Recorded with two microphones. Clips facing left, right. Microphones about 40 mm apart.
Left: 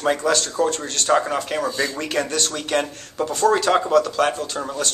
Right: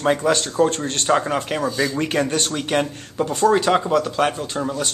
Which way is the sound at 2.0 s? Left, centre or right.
Centre.